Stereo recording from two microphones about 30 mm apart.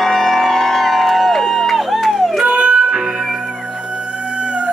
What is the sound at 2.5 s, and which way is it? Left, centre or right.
Music, right.